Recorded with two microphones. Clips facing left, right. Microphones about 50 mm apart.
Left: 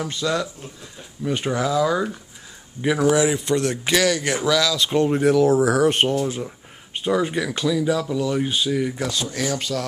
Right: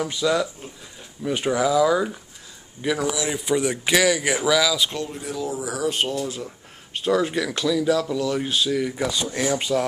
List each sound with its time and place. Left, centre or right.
0.0 s speech: centre
2.8 s speech: right
3.3 s speech: centre
5.2 s speech: left
7.1 s speech: centre
8.9 s speech: centre